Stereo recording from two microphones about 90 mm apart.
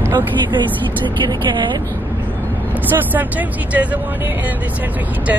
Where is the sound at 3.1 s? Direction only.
15° right (ahead or behind).